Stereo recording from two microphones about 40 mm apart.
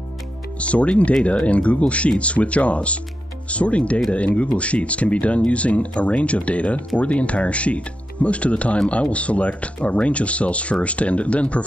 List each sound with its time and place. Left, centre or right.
0.6 s speech: left